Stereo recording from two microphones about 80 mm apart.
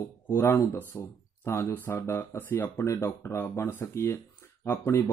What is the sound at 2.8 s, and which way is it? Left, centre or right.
Speech, left.